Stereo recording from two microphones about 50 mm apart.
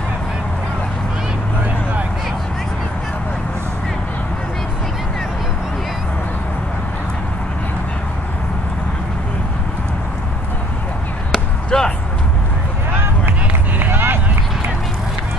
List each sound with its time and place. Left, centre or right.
11.3 s basketball bounce: centre
13.7 s run: right